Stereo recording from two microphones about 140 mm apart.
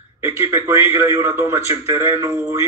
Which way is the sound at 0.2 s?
20° right (ahead or behind).